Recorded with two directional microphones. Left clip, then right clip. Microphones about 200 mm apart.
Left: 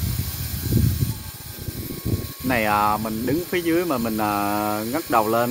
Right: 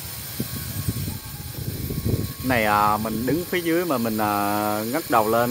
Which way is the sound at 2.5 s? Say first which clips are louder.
Even; 5° right (ahead or behind).